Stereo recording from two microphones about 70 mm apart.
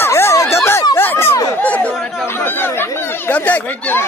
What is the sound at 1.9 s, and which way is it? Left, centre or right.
Chatter, centre.